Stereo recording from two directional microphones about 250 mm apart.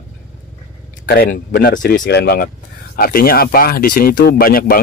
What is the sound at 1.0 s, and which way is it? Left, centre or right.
Speech, left.